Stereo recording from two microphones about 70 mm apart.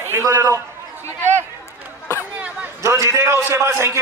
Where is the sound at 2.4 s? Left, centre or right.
Centre.